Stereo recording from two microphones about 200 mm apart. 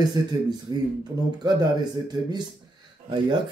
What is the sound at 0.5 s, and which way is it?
Speech, 20° right (ahead or behind).